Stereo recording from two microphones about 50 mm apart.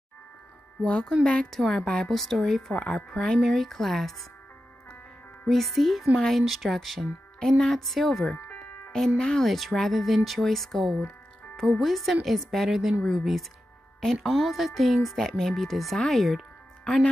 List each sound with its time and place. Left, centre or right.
0.8 s a woman's voice: centre
1.5 s speech: centre
2.7 s speech: centre
5.5 s speech: centre
9.4 s speech: centre
12.6 s speech: centre